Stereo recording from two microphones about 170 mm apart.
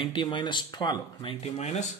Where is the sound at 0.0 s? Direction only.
30° left (ahead or behind).